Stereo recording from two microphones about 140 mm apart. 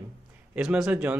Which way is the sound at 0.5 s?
5° right (ahead or behind).